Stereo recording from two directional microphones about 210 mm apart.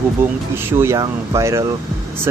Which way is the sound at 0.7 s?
10° right (ahead or behind).